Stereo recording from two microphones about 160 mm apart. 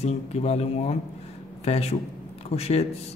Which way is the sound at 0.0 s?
40° left (ahead or behind).